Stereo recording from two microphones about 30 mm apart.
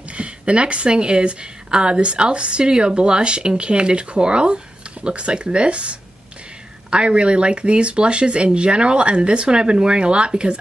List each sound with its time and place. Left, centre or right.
0.1 s speech: right